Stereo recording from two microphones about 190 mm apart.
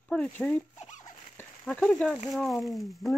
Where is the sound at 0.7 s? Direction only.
40° left (ahead or behind).